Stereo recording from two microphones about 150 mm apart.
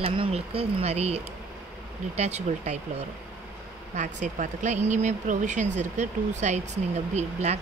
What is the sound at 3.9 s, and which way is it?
Speech, 55° right (ahead or behind).